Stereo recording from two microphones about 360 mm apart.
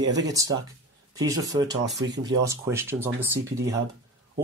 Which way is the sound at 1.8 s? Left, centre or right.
Right.